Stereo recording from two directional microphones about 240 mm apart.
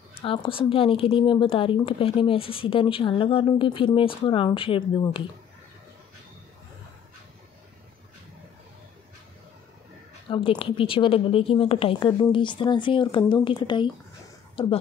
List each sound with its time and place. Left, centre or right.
0.2 s a woman's voice: left
10.3 s a woman's voice: left
14.5 s a sound: left